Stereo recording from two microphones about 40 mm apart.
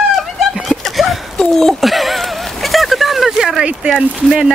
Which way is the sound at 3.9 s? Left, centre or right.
Centre.